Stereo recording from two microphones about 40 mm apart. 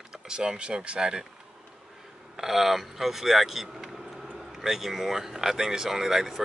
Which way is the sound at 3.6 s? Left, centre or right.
Centre.